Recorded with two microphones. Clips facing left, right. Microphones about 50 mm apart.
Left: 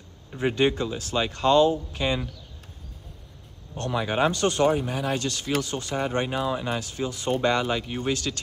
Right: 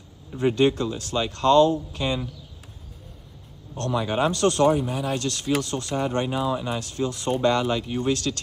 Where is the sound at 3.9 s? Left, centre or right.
Centre.